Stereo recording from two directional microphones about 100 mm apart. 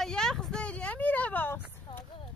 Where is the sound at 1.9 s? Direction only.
50° left (ahead or behind).